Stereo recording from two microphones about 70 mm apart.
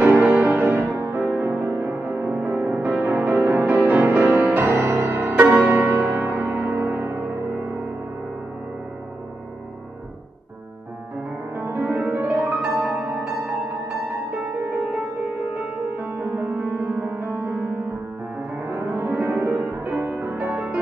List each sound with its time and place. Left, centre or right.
0.0 s music: right
0.9 s music: right
1.3 s music: right
4.6 s music: right
11.5 s music: right
16.0 s music: right
18.5 s music: right